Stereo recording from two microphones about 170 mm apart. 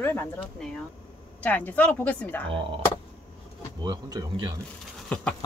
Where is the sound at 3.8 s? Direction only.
25° right (ahead or behind).